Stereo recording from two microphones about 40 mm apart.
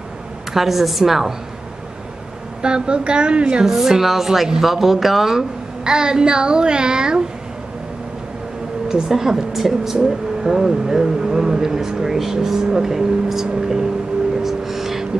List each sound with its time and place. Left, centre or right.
0.5 s speech: centre
2.6 s a child's voice: right
3.6 s speech: centre
5.9 s a child's voice: centre
9.1 s speech: centre
14.4 s music: centre